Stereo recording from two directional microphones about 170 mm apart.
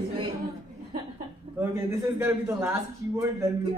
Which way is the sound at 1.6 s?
15° right (ahead or behind).